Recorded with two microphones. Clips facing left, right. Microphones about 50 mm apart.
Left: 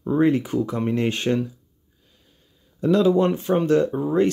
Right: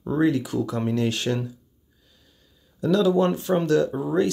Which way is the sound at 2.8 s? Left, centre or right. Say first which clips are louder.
Left 2 dB; left.